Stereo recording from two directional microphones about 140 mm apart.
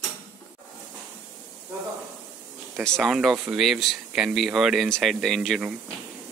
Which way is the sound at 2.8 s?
Centre (ahead or behind).